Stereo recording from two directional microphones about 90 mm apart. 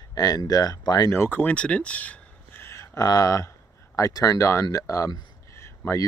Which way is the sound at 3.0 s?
45° left (ahead or behind).